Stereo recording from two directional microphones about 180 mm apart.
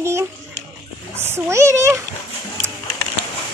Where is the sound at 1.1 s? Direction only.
15° right (ahead or behind).